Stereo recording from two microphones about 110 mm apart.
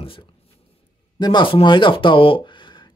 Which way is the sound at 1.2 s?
45° left (ahead or behind).